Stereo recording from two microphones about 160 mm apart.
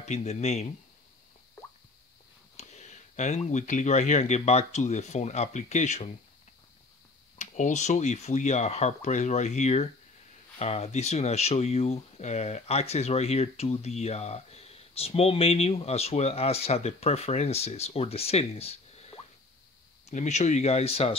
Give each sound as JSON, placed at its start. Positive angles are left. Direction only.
{"t": 0.0, "sound": "speech", "side_deg": 45}
{"t": 2.5, "sound": "speech", "side_deg": 45}
{"t": 7.3, "sound": "speech", "side_deg": 50}